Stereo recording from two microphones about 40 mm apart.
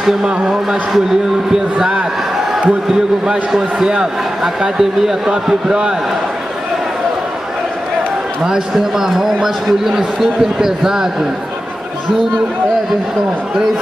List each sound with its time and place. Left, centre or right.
0.5 s a man's voice: centre
3.3 s a man's voice: centre
8.7 s a man's voice: centre